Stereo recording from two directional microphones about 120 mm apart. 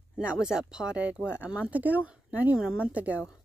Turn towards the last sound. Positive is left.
turn(degrees=-10)  # may be behind; listen again after turning